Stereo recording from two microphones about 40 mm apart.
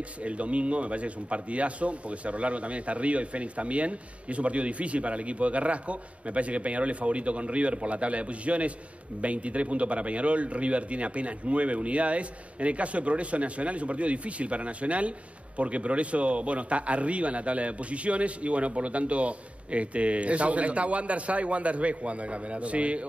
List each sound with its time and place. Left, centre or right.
0.2 s speech: right